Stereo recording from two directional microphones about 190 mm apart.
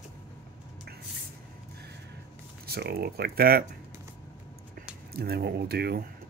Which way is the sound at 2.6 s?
55° right (ahead or behind).